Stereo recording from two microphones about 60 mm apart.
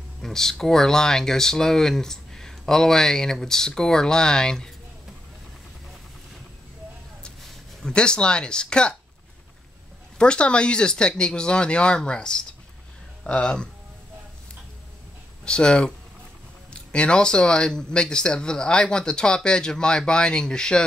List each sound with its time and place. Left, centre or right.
0.2 s speech: centre
7.8 s speech: centre
10.1 s speech: centre
15.4 s speech: centre